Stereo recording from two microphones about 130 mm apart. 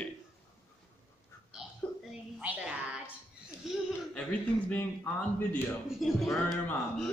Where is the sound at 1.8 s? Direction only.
10° left (ahead or behind).